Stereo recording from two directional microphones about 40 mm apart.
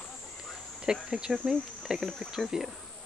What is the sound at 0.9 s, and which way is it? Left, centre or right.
Speech, centre.